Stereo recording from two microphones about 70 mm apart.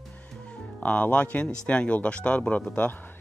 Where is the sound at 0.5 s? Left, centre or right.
Centre.